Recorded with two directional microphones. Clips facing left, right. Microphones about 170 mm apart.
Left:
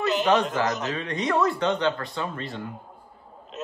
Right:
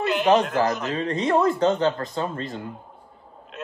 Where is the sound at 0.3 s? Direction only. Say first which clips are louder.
Right 5 dB; 30° right (ahead or behind).